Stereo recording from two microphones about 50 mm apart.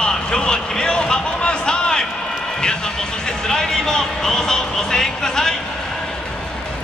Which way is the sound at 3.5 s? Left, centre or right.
Centre.